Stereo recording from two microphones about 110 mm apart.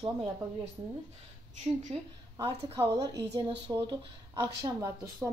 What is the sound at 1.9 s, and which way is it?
Speech, 65° right (ahead or behind).